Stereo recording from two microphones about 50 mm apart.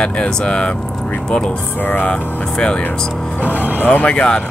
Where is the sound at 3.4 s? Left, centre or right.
Right.